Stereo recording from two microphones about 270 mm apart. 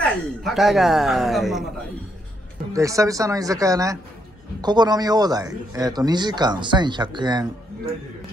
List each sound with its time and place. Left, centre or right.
0.0 s a man's voice: centre
2.7 s a man's voice: centre